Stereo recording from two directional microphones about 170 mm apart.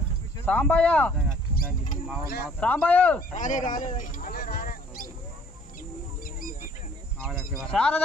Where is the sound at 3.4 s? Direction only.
50° left (ahead or behind).